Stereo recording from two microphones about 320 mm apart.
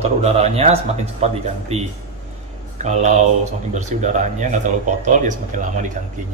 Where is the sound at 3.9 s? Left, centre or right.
Right.